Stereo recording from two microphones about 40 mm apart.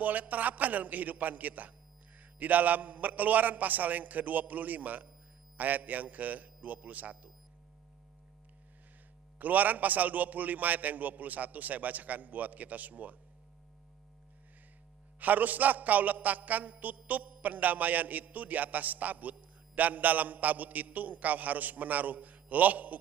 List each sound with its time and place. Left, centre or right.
0.0 s a man's voice: right
9.4 s a man's voice: right
15.1 s a man's voice: right